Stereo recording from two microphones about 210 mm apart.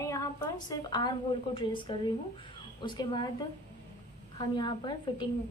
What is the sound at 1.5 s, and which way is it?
A woman's voice, 25° left (ahead or behind).